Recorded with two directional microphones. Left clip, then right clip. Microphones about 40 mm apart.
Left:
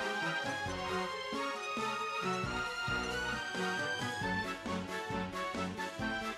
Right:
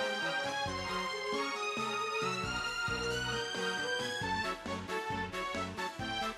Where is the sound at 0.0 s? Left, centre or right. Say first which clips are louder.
Right 1 dB; right.